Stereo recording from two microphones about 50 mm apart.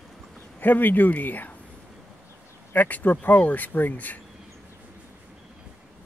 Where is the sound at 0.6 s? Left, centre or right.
Left.